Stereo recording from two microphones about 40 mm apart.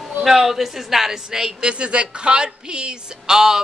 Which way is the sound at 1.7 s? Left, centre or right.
Right.